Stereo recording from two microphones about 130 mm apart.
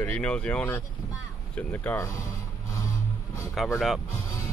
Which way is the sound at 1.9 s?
25° left (ahead or behind).